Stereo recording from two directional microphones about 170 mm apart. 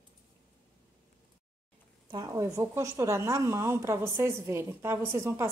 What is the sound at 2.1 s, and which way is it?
A woman's voice, 20° right (ahead or behind).